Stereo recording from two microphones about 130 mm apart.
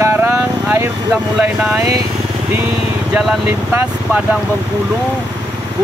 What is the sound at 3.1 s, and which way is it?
Speech, 5° right (ahead or behind).